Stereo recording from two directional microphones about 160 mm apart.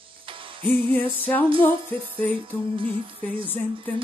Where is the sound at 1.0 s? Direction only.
10° left (ahead or behind).